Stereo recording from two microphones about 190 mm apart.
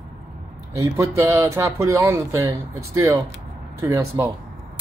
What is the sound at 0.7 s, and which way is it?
Speech, 15° right (ahead or behind).